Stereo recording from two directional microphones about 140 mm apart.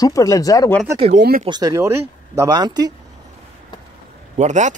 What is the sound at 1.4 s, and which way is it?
A man's voice, 30° right (ahead or behind).